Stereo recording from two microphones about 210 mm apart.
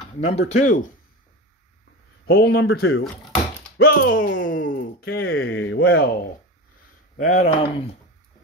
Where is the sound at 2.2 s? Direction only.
50° left (ahead or behind).